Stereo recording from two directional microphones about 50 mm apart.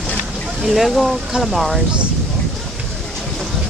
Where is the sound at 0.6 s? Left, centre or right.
Centre.